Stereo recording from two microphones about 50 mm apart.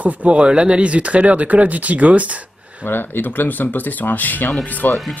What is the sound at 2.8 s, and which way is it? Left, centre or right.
Speech, left.